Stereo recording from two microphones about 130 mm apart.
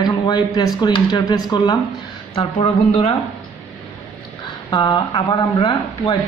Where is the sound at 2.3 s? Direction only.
50° left (ahead or behind).